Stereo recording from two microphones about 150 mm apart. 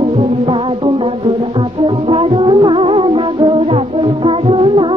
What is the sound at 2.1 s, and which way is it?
Music, 35° right (ahead or behind).